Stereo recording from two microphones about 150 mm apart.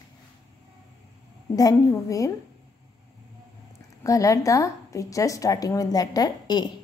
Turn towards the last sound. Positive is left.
turn(degrees=30)  # may be behind; listen again after turning